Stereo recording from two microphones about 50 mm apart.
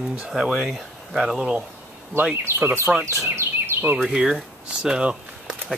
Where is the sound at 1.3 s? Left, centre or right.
Centre.